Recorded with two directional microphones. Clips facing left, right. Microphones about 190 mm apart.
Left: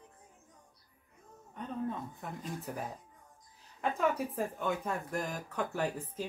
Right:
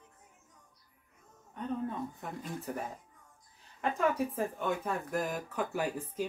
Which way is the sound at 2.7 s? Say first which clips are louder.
Right 2 dB; centre (ahead or behind).